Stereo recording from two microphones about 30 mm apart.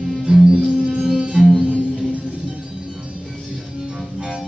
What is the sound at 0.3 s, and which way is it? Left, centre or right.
Music, right.